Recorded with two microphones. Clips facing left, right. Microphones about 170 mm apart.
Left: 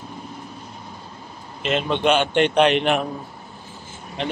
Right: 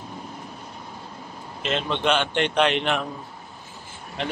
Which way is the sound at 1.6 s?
5° left (ahead or behind).